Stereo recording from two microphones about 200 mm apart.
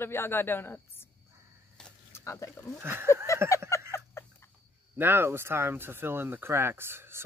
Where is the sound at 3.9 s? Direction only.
15° left (ahead or behind).